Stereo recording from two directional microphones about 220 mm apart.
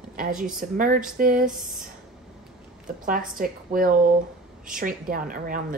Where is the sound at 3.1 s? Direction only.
40° right (ahead or behind).